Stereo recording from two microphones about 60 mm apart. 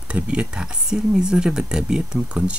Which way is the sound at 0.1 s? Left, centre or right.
Centre.